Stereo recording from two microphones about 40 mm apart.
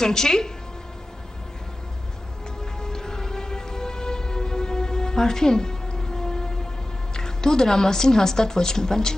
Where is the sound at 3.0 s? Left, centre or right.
Centre.